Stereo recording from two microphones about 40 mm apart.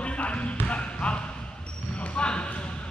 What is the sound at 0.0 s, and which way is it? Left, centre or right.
Basketball bounce, left.